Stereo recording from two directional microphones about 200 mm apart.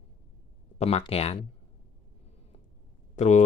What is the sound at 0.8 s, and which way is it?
Speech, 30° left (ahead or behind).